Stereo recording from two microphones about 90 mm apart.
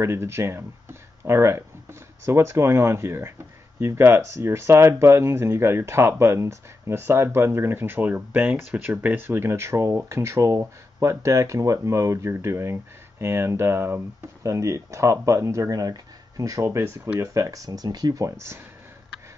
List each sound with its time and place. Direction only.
0.0 s speech: 30° right (ahead or behind)